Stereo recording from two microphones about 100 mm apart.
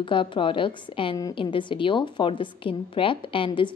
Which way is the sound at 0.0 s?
60° left (ahead or behind).